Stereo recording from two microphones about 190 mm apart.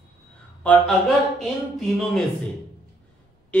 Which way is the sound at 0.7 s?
Centre (ahead or behind).